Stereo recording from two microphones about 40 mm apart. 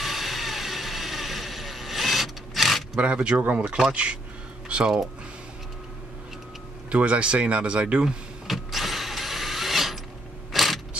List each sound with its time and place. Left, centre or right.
0.0 s vehicle: centre
3.0 s speech: right
6.9 s speech: right
8.5 s power windows: centre
10.5 s a sound: centre